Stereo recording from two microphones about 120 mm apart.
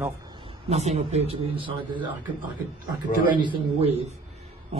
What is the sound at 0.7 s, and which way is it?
Speech, 65° right (ahead or behind).